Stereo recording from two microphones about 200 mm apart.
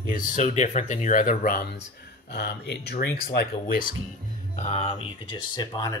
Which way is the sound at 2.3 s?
60° left (ahead or behind).